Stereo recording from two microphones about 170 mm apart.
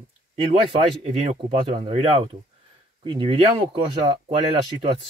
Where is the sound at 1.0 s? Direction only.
35° right (ahead or behind).